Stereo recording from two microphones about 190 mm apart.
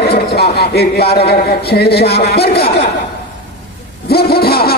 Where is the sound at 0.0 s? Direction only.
60° left (ahead or behind).